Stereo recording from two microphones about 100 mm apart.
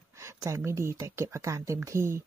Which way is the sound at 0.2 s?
30° right (ahead or behind).